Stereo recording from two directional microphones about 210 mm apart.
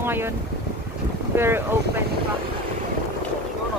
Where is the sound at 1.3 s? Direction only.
10° right (ahead or behind).